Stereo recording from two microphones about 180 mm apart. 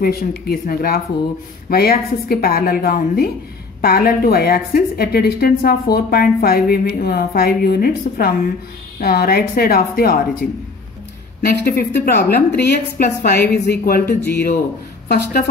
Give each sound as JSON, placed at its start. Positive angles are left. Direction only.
{"t": 0.0, "sound": "a woman's voice", "side_deg": 55}
{"t": 11.4, "sound": "a woman's voice", "side_deg": 55}